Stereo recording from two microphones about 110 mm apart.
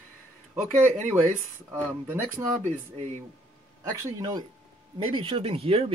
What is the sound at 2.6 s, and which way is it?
Speech, 90° right.